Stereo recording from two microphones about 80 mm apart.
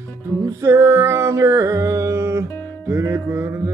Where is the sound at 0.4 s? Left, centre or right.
Right.